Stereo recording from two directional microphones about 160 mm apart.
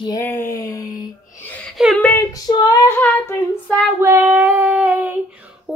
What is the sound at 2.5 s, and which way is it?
Speech, 25° left (ahead or behind).